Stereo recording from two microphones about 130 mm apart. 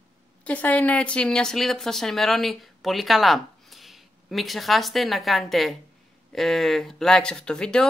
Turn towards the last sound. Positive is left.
turn(degrees=5)  # may be behind; listen again after turning